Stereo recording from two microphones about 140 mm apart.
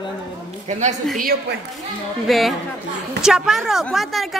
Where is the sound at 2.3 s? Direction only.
Centre (ahead or behind).